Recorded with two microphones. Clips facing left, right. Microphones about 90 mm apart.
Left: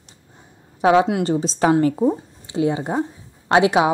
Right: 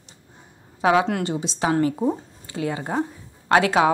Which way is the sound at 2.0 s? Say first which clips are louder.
Left 4 dB; centre (ahead or behind).